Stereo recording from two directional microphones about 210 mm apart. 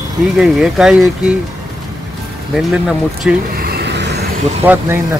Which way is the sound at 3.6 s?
50° right (ahead or behind).